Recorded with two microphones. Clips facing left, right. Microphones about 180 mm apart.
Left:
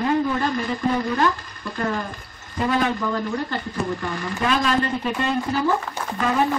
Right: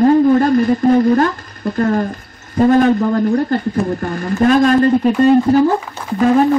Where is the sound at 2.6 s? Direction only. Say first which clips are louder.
Right 11 dB; 45° right (ahead or behind).